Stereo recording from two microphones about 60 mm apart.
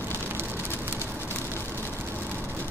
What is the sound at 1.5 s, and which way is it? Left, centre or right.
Vehicle, right.